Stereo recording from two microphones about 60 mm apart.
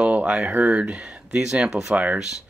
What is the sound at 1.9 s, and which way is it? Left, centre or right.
Speech, right.